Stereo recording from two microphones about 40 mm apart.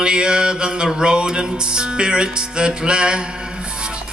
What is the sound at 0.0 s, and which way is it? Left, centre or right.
Music, right.